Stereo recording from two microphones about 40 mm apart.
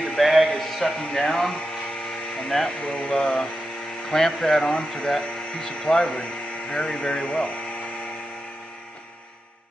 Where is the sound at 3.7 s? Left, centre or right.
Centre.